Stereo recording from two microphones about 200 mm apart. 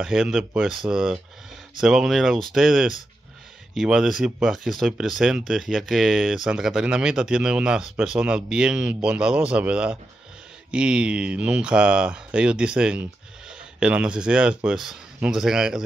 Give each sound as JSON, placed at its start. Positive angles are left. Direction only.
{"t": 0.0, "sound": "speech", "side_deg": -5}